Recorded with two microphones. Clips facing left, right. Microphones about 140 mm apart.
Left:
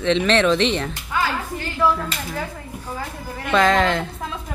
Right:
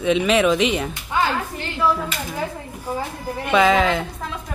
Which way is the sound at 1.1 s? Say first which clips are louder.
Right 3 dB; 25° right (ahead or behind).